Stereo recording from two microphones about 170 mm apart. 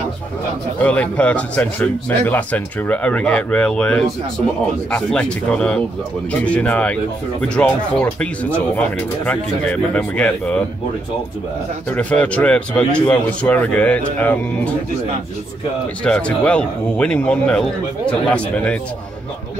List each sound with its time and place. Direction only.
0.7 s speech: 10° left (ahead or behind)
11.9 s speech: 10° left (ahead or behind)
16.0 s speech: 5° left (ahead or behind)